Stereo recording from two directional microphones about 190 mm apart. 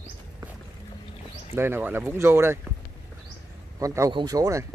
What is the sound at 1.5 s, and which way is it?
Speech, 10° right (ahead or behind).